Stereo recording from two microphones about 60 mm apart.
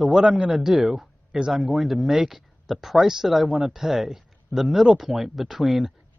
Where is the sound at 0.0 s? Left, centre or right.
Centre.